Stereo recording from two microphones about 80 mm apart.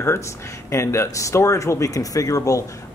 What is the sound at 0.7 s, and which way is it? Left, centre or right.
Speech, left.